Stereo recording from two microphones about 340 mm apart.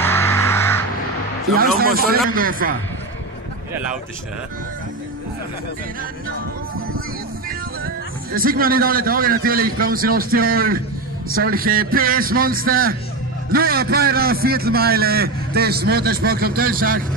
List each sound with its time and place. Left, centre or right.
0.0 s crow: centre
1.8 s a man's voice: right
7.4 s a man's voice: right